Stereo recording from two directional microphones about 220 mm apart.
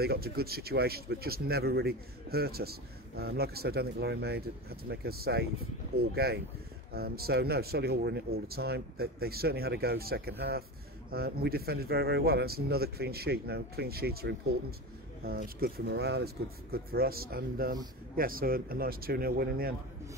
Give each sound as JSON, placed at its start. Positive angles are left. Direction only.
{"t": 0.0, "sound": "speech", "side_deg": -45}